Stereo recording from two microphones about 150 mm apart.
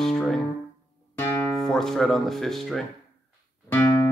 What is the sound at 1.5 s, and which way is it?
Speech, centre (ahead or behind).